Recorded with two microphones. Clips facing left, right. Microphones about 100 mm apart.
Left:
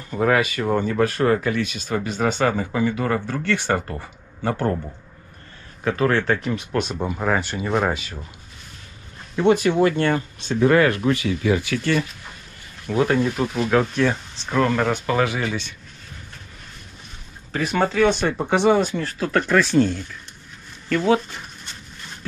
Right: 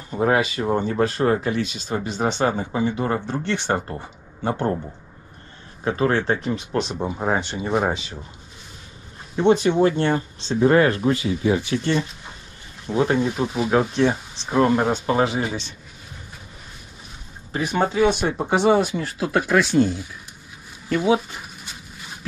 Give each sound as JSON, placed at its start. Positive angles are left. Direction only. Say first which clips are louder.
{"t": 0.1, "sound": "speech", "louder": "even", "side_deg": -25}
{"t": 5.9, "sound": "speech", "louder": "left 1 dB", "side_deg": -25}
{"t": 9.4, "sound": "speech", "louder": "even", "side_deg": -20}
{"t": 17.6, "sound": "speech", "louder": "even", "side_deg": -10}
{"t": 20.9, "sound": "a sound", "louder": "even", "side_deg": -10}